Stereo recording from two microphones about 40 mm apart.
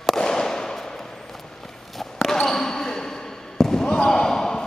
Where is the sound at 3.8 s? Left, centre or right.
Left.